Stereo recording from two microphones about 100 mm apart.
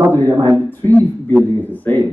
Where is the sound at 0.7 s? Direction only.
20° left (ahead or behind).